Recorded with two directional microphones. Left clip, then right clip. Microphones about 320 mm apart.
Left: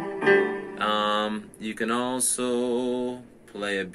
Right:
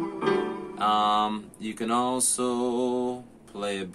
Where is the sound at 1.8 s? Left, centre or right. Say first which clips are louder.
Right 1 dB; centre.